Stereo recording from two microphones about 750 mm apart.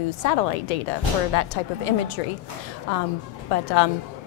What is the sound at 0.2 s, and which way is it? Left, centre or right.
A woman's voice, left.